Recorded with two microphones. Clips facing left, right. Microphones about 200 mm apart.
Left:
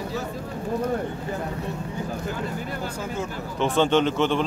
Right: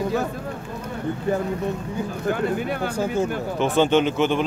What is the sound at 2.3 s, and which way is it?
Speech, 65° right (ahead or behind).